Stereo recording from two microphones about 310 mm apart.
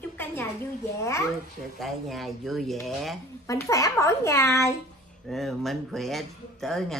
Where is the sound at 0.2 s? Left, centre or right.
Centre.